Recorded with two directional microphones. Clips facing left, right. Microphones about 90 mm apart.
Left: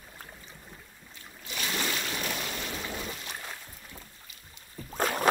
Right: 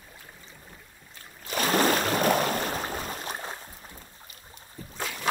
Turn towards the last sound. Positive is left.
turn(degrees=45)  # may be behind; listen again after turning